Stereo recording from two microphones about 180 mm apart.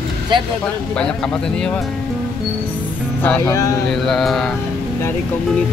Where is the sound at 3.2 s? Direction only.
15° left (ahead or behind).